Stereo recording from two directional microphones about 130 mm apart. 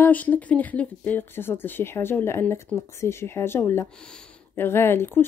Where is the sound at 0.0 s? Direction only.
15° left (ahead or behind).